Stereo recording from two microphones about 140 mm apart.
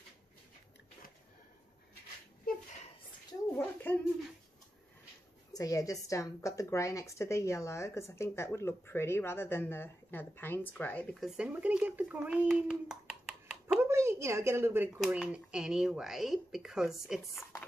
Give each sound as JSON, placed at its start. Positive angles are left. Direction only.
{"t": 3.5, "sound": "a sound", "side_deg": 15}
{"t": 5.5, "sound": "a woman's voice", "side_deg": 25}
{"t": 11.2, "sound": "a child's voice", "side_deg": -10}
{"t": 13.8, "sound": "speech", "side_deg": -20}